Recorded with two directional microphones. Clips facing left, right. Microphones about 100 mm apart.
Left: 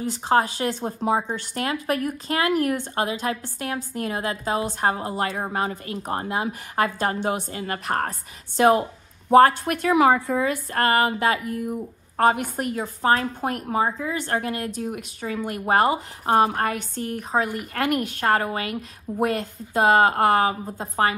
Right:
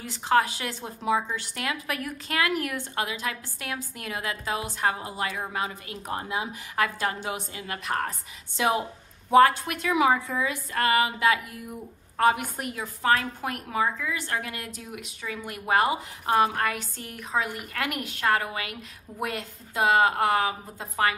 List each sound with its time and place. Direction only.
0.3 s a woman's voice: 35° left (ahead or behind)
0.7 s a woman's voice: 45° left (ahead or behind)